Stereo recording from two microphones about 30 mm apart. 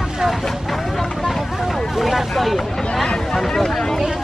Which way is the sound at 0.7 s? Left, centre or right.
Centre.